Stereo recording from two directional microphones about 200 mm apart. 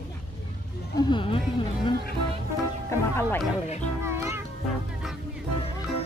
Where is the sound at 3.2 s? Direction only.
10° left (ahead or behind).